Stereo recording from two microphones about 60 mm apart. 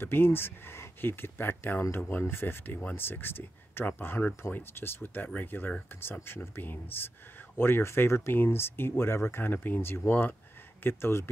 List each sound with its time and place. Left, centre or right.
0.0 s speech: left